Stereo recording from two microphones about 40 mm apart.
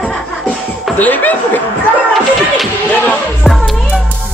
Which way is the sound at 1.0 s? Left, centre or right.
Left.